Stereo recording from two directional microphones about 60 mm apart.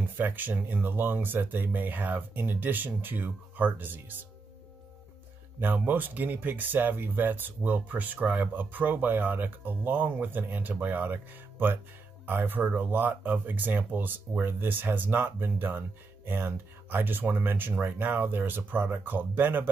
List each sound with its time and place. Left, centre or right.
0.0 s speech: right
5.6 s speech: right
12.3 s speech: right